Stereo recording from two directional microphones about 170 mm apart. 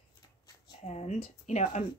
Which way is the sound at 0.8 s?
40° left (ahead or behind).